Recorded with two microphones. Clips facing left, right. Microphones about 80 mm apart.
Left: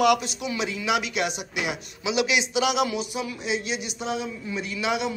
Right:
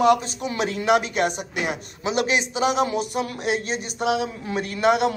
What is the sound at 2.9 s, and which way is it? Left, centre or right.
Speech, right.